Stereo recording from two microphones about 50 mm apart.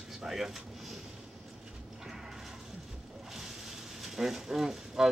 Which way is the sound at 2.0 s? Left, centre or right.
Centre.